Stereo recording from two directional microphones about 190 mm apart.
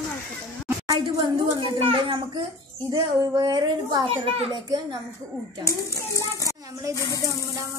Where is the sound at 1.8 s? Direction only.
25° right (ahead or behind).